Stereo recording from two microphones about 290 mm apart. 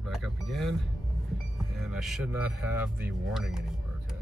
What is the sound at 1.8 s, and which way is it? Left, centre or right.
Speech, centre.